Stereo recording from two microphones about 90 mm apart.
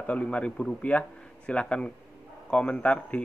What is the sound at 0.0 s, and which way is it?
A man's voice, 15° left (ahead or behind).